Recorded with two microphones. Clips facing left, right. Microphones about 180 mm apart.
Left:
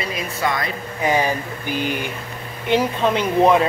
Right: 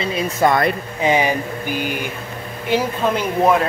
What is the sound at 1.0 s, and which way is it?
Speech, 20° right (ahead or behind).